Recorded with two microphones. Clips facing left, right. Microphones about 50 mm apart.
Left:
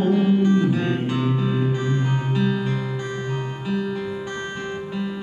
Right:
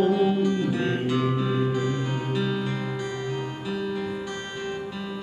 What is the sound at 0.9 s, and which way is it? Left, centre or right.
Music, left.